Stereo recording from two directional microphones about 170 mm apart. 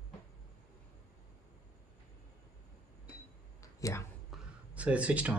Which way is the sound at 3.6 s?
20° left (ahead or behind).